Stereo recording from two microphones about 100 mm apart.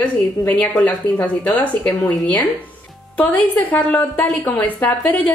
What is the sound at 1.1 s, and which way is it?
Speech, 15° left (ahead or behind).